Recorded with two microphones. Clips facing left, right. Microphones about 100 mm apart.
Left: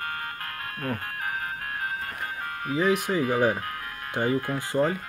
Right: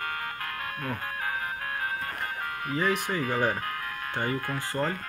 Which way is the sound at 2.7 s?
10° left (ahead or behind).